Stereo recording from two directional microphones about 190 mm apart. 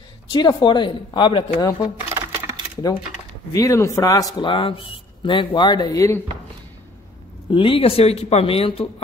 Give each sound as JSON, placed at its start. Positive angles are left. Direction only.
{"t": 0.3, "sound": "a man's voice", "side_deg": 25}
{"t": 2.1, "sound": "sewing machine", "side_deg": -15}
{"t": 3.5, "sound": "a man's voice", "side_deg": 15}
{"t": 7.5, "sound": "speech", "side_deg": 30}